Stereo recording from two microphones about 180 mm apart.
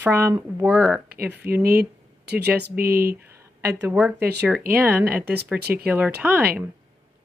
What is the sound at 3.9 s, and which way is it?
Speech, 5° right (ahead or behind).